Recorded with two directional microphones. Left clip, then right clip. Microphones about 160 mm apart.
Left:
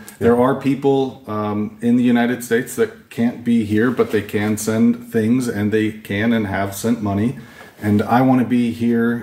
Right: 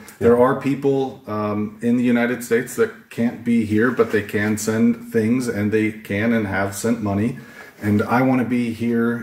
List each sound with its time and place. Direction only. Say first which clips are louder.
0.2 s speech: even; 25° left (ahead or behind)